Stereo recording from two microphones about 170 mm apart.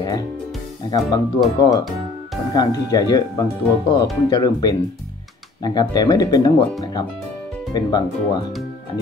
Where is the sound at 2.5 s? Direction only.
25° left (ahead or behind).